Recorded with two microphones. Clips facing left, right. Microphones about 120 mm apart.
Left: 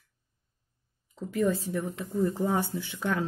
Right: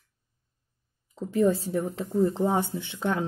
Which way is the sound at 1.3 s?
30° right (ahead or behind).